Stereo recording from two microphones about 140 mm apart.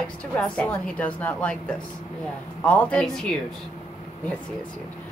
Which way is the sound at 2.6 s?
10° left (ahead or behind).